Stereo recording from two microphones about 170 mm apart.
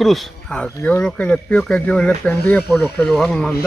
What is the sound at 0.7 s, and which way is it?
Speech, 15° left (ahead or behind).